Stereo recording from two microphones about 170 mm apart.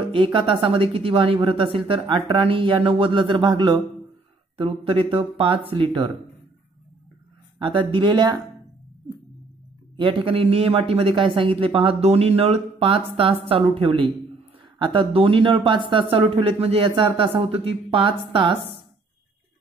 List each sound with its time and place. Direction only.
0.1 s a man's voice: 30° right (ahead or behind)
7.5 s speech: 30° right (ahead or behind)
9.9 s a man's voice: 30° right (ahead or behind)